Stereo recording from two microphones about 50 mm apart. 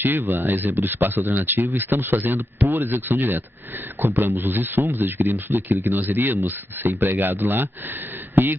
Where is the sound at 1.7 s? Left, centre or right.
Right.